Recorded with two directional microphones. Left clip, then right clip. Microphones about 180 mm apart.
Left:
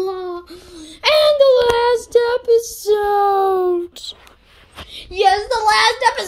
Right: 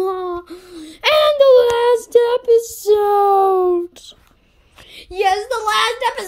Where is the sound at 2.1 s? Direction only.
25° right (ahead or behind).